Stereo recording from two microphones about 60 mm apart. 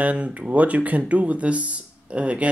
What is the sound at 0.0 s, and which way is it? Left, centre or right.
Speech, right.